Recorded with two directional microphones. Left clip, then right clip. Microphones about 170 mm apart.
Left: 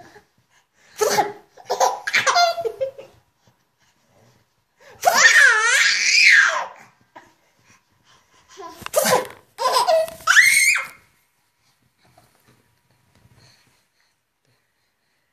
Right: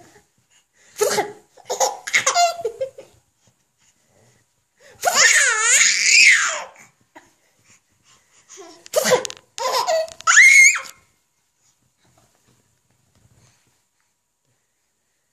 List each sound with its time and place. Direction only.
0.7 s sneeze: 65° right (ahead or behind)
1.7 s laughter: 10° right (ahead or behind)
2.6 s laughter: 65° right (ahead or behind)
5.1 s laughter: 10° right (ahead or behind)
8.5 s laughter: 10° right (ahead or behind)
8.9 s sneeze: 50° right (ahead or behind)
9.3 s baby laughter: 5° right (ahead or behind)